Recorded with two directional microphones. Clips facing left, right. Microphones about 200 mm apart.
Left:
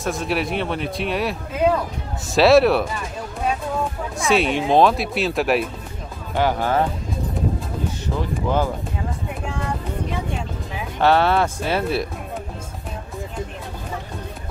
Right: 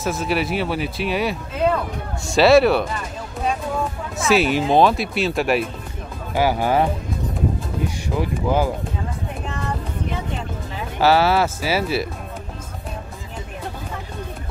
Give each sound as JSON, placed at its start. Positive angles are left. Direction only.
{"t": 0.0, "sound": "speech", "side_deg": 0}
{"t": 1.5, "sound": "speech", "side_deg": 10}
{"t": 2.3, "sound": "speech", "side_deg": 0}
{"t": 4.2, "sound": "speech", "side_deg": -5}
{"t": 8.2, "sound": "speech", "side_deg": -10}
{"t": 11.0, "sound": "speech", "side_deg": -5}